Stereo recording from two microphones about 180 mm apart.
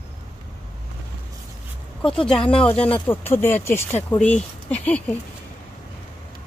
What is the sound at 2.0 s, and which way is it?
Speech, 5° left (ahead or behind).